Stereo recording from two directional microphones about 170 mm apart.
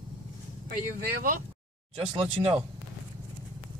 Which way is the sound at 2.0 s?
30° right (ahead or behind).